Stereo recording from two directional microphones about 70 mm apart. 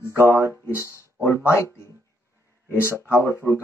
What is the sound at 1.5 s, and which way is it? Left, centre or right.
Speech, left.